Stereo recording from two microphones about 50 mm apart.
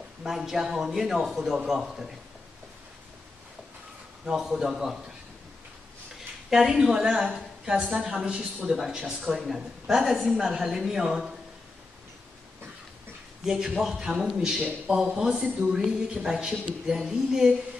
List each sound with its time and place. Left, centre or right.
0.2 s a man's voice: centre
4.3 s a man's voice: centre
6.5 s a man's voice: centre
13.7 s a man's voice: centre